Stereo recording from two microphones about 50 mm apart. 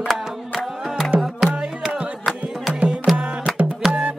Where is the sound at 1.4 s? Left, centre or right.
Centre.